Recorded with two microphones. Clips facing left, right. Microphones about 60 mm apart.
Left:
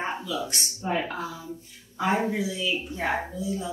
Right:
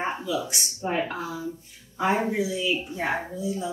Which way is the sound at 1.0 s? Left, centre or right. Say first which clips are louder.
Right 2 dB; right.